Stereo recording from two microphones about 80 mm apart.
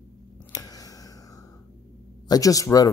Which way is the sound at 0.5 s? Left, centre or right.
Left.